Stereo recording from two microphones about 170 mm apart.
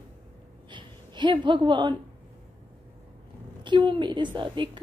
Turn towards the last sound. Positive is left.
turn(degrees=-30)  # may be behind; listen again after turning